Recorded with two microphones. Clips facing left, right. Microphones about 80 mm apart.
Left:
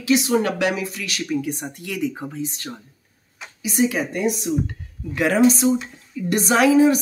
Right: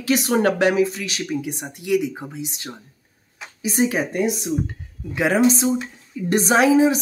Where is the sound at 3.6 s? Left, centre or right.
Right.